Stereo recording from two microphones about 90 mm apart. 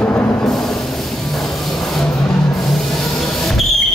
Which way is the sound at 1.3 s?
5° left (ahead or behind).